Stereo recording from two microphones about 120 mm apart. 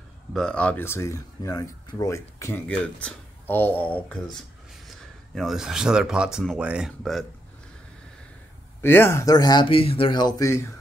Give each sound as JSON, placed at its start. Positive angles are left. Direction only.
{"t": 0.3, "sound": "speech", "side_deg": 5}
{"t": 0.8, "sound": "speech", "side_deg": 25}
{"t": 2.5, "sound": "speech", "side_deg": 10}
{"t": 7.0, "sound": "a man's voice", "side_deg": 0}
{"t": 8.8, "sound": "speech", "side_deg": 20}